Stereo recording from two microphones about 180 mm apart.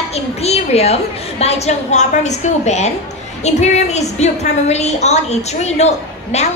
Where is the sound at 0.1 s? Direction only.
35° left (ahead or behind).